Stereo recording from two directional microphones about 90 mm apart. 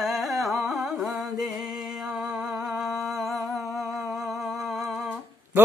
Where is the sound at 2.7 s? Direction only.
Centre (ahead or behind).